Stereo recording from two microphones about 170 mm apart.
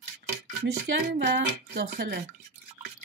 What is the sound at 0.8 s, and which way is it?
Speech, 85° right.